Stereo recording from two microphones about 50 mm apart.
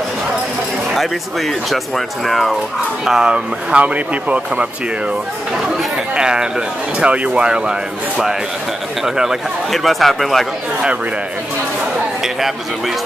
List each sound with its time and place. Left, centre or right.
1.7 s speech: centre
3.1 s speech: centre
6.1 s speech: centre
9.0 s speech: centre